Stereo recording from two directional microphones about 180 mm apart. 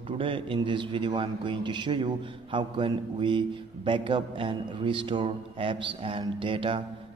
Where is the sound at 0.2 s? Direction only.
30° right (ahead or behind).